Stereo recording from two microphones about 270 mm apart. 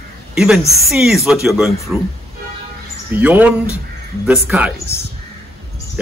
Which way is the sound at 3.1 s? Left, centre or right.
Centre.